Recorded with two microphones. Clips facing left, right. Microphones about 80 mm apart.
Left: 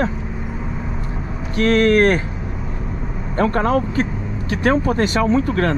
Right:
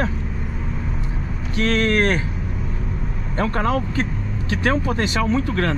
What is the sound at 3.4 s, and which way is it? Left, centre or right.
Speech, left.